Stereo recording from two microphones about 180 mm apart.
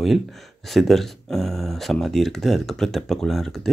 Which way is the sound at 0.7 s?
Centre (ahead or behind).